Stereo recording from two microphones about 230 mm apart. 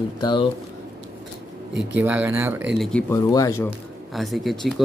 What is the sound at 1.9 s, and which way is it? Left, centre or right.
Speech, centre.